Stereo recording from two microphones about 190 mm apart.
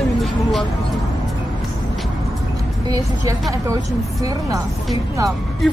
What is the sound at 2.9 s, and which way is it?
Speech, 15° right (ahead or behind).